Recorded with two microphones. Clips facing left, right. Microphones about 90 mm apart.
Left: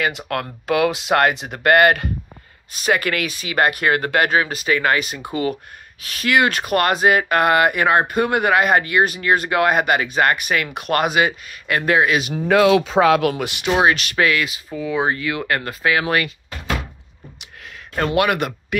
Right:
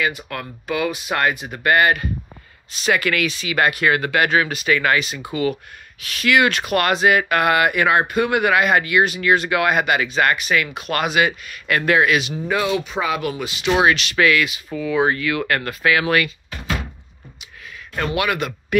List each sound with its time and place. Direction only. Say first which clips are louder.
0.3 s speech: left 5 dB; 70° left (ahead or behind)
2.8 s speech: even; 40° left (ahead or behind)
4.9 s speech: even; 50° left (ahead or behind)
11.6 s speech: even; 25° left (ahead or behind)
12.2 s speech: left 6 dB; 50° left (ahead or behind); by 12.8 s 75° left (ahead or behind)
13.0 s speech: left 7 dB; 90° left; by 13.6 s 70° left (ahead or behind)
14.1 s speech: right 1 dB; 35° left (ahead or behind)
17.9 s speech: left 3 dB; 45° left (ahead or behind)